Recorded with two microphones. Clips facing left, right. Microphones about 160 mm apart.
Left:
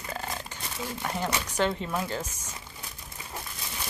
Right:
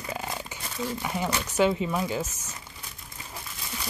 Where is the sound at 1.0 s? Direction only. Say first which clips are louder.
Left 2 dB; 5° right (ahead or behind).